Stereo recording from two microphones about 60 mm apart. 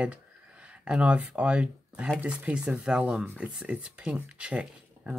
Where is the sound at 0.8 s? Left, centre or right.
Centre.